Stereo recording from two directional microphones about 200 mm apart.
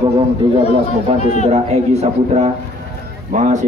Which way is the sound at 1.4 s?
30° right (ahead or behind).